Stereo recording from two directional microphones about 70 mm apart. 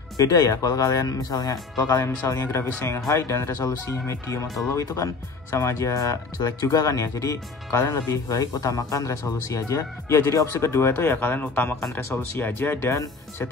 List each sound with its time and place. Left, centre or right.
0.2 s speech: left
2.4 s speech: left